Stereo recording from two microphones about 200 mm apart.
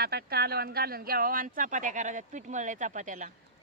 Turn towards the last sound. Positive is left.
turn(degrees=-40)  # may be behind; listen again after turning